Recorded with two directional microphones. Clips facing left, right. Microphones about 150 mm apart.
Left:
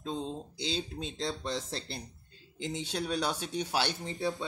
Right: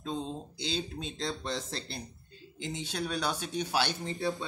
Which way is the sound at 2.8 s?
25° left (ahead or behind).